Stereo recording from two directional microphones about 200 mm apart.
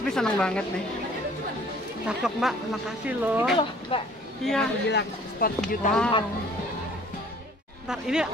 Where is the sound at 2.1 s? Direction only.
Centre (ahead or behind).